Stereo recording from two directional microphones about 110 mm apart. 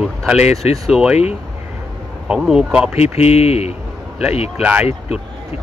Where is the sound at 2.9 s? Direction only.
75° left (ahead or behind).